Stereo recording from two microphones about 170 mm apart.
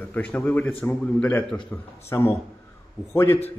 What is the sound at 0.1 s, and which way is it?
A man's voice, 10° left (ahead or behind).